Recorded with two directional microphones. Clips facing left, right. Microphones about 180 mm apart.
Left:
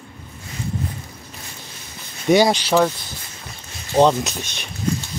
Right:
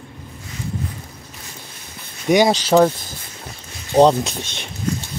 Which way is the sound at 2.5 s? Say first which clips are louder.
Right 3 dB; 35° right (ahead or behind).